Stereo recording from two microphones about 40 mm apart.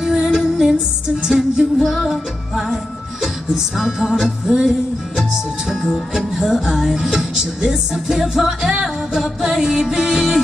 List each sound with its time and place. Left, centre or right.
0.0 s music: centre